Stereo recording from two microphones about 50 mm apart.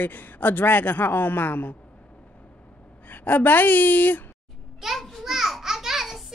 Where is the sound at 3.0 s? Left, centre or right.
Left.